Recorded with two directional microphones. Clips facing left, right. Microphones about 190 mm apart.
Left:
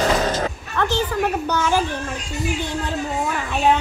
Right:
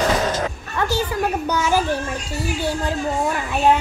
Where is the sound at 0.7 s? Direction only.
10° right (ahead or behind).